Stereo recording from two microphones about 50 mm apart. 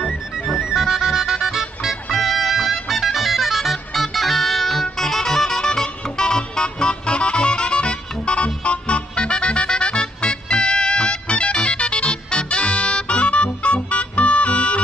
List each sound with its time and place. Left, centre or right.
0.0 s music: centre; by 14.8 s left